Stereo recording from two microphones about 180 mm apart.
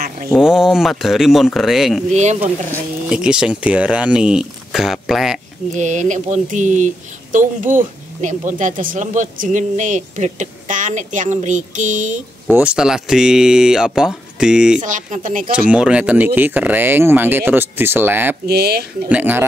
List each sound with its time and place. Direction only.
0.3 s speech: 5° right (ahead or behind)
2.1 s speech: 40° right (ahead or behind)
3.1 s speech: 5° right (ahead or behind)
5.8 s speech: 45° right (ahead or behind)
12.4 s speech: 5° right (ahead or behind)
14.8 s speech: 45° right (ahead or behind)
15.7 s speech: 5° right (ahead or behind)
18.5 s speech: 60° right (ahead or behind)
19.0 s speech: 10° right (ahead or behind)